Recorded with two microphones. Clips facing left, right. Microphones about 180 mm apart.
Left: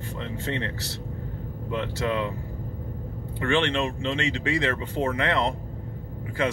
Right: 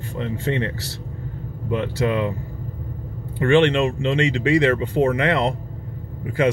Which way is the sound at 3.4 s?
60° right (ahead or behind).